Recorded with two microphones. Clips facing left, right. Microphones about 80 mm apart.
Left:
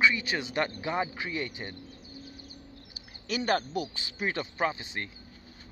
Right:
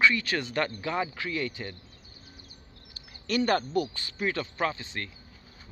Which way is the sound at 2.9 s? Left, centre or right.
Centre.